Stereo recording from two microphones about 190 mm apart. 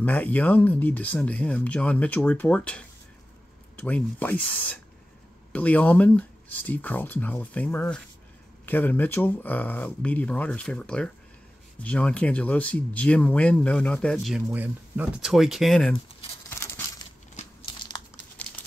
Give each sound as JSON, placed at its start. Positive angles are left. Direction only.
{"t": 0.0, "sound": "speech", "side_deg": 10}
{"t": 16.4, "sound": "a sound", "side_deg": 10}
{"t": 17.4, "sound": "crumpling", "side_deg": 30}